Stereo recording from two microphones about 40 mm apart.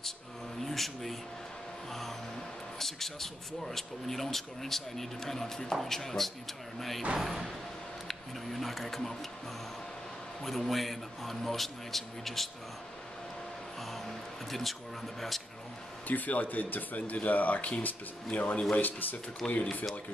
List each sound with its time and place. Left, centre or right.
0.6 s a man's voice: centre
8.1 s speech: centre
10.4 s a man's voice: centre
13.9 s a man's voice: centre
16.1 s speech: left
18.8 s speech: left